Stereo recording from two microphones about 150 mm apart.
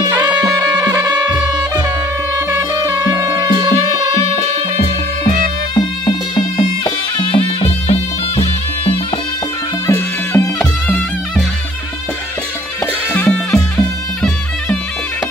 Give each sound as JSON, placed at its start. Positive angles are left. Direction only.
{"t": 0.2, "sound": "music", "side_deg": -25}
{"t": 3.1, "sound": "music", "side_deg": -25}
{"t": 5.8, "sound": "music", "side_deg": 30}
{"t": 9.8, "sound": "music", "side_deg": 20}
{"t": 12.8, "sound": "music", "side_deg": 10}